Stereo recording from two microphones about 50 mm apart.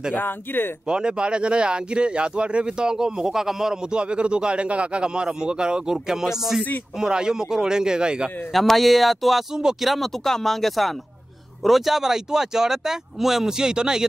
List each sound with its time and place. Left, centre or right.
0.1 s speech: left
0.8 s speech: centre
8.5 s speech: centre
9.6 s speech: centre
9.8 s speech: centre